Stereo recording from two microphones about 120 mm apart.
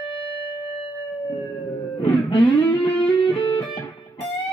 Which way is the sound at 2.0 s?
50° left (ahead or behind).